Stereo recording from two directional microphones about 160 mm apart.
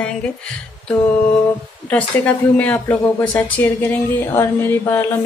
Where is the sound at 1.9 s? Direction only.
10° left (ahead or behind).